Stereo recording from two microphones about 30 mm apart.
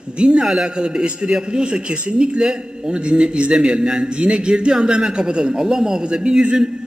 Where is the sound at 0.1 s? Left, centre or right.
Right.